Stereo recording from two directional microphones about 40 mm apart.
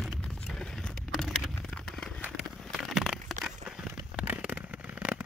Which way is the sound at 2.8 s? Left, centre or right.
Centre.